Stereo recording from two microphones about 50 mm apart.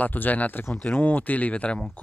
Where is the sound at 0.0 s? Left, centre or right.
Left.